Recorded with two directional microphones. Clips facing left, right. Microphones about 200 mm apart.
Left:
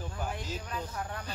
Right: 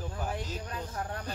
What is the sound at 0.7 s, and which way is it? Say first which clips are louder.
Speech: even; 35° right (ahead or behind).